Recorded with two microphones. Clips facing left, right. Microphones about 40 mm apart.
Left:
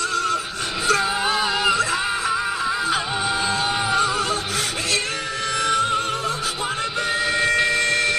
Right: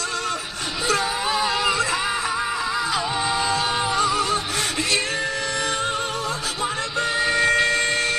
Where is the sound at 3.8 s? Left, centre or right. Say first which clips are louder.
Left 2 dB; left.